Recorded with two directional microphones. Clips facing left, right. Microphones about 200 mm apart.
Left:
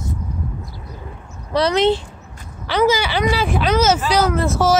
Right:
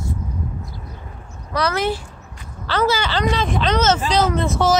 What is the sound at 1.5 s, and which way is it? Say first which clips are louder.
Speech: left 5 dB; 25° left (ahead or behind).